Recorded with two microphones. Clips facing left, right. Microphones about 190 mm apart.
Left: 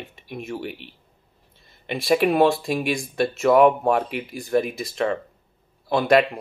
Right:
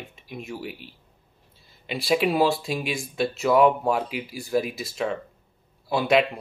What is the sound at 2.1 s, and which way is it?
Speech, 60° left (ahead or behind).